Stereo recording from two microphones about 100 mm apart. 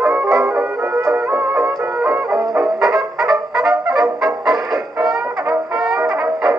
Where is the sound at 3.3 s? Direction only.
Centre (ahead or behind).